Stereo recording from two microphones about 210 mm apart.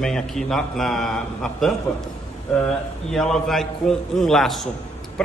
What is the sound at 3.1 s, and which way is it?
A man's voice, centre (ahead or behind).